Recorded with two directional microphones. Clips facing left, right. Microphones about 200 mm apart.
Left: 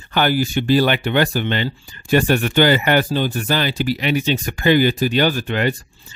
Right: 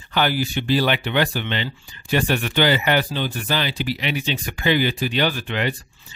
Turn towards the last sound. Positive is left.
turn(degrees=45)  # may be behind; listen again after turning